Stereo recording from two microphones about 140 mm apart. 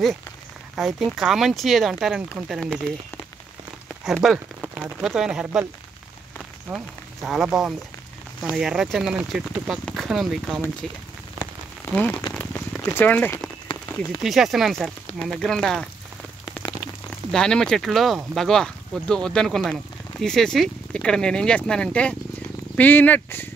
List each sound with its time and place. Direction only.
0.7 s speech: centre (ahead or behind)
4.0 s speech: centre (ahead or behind)
6.7 s speech: centre (ahead or behind)
11.4 s rain on surface: 20° right (ahead or behind)
11.9 s speech: 10° left (ahead or behind)
13.9 s speech: centre (ahead or behind)
17.3 s speech: 5° left (ahead or behind)